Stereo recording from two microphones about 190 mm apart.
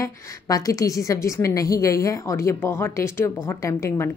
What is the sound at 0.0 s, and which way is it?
A woman's voice, 15° left (ahead or behind).